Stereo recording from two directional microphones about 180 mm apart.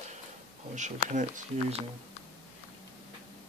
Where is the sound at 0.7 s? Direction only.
40° right (ahead or behind).